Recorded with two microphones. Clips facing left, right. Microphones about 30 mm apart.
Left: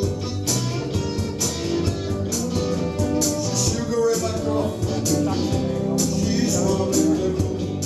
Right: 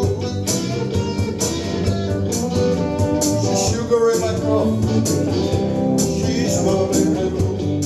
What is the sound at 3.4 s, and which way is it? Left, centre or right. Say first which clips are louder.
Music: right 5 dB; right.